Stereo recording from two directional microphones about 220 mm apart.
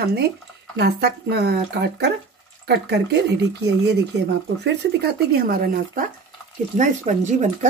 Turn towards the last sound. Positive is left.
turn(degrees=-35)  # may be behind; listen again after turning